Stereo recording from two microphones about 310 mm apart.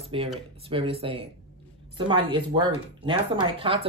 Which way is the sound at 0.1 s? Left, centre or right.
Centre.